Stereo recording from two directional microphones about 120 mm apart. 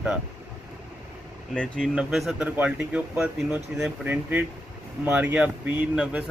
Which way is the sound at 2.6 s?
15° right (ahead or behind).